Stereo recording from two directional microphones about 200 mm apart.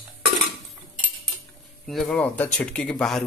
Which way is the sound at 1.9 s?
5° left (ahead or behind).